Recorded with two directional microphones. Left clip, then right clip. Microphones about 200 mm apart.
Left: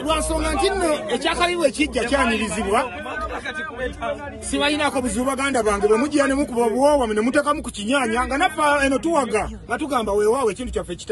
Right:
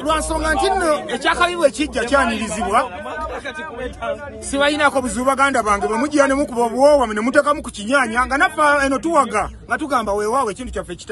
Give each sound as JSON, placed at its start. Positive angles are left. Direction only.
{"t": 0.0, "sound": "speech", "side_deg": -15}
{"t": 4.5, "sound": "speech", "side_deg": -10}